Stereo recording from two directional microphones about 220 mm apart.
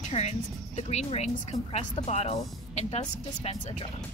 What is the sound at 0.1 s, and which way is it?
Speech, 30° left (ahead or behind).